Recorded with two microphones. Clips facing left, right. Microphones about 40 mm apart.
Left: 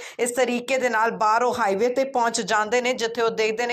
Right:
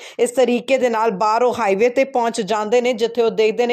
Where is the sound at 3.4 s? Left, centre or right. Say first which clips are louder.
Right 7 dB; right.